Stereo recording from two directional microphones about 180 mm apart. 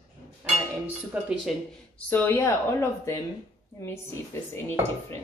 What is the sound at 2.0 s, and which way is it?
Speech, 10° left (ahead or behind).